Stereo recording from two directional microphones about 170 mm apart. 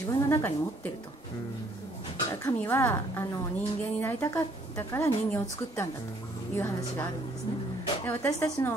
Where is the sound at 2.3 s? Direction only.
15° left (ahead or behind).